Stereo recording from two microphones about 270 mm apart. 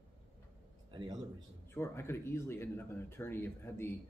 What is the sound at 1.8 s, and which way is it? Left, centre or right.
Speech, centre.